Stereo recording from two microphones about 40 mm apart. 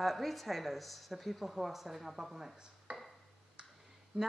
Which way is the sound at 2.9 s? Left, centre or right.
Right.